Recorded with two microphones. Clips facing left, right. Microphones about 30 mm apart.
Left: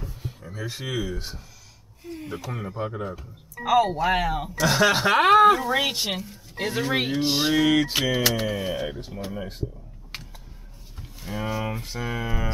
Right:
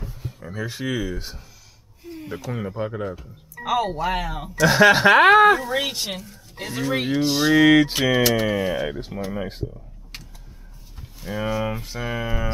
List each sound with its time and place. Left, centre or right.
0.4 s speech: centre
4.6 s speech: centre
5.5 s speech: centre
7.5 s speech: centre
8.3 s speech: centre
8.8 s speech: centre
10.1 s tick-tock: centre
11.0 s speech: centre